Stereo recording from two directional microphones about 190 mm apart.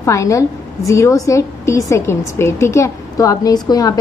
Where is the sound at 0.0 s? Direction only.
15° left (ahead or behind).